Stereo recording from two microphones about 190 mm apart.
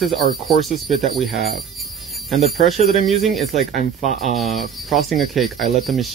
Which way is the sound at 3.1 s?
Centre (ahead or behind).